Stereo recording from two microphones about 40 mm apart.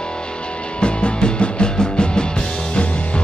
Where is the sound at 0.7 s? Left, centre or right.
Left.